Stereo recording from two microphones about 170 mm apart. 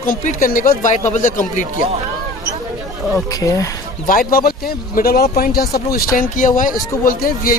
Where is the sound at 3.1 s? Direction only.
20° left (ahead or behind).